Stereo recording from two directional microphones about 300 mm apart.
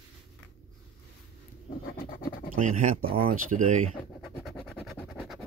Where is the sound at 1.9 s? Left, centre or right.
Left.